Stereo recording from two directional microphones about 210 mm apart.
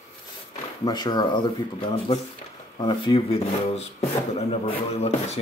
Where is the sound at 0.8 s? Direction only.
20° left (ahead or behind).